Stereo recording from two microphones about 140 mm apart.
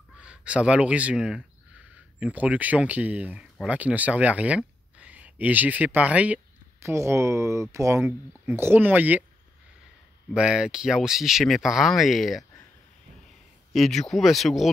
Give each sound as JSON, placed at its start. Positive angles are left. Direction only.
{"t": 0.2, "sound": "speech", "side_deg": -10}
{"t": 10.3, "sound": "speech", "side_deg": -5}
{"t": 13.7, "sound": "speech", "side_deg": 0}